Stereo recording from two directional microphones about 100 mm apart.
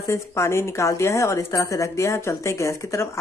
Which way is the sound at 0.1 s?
25° left (ahead or behind).